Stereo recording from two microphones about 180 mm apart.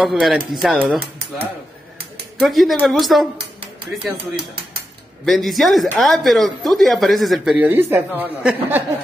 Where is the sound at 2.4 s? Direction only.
Centre (ahead or behind).